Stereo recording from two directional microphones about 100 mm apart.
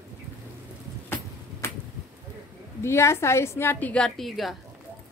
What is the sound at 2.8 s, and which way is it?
A woman's voice, 25° left (ahead or behind).